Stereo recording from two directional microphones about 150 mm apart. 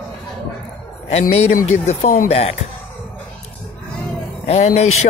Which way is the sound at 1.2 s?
65° left (ahead or behind).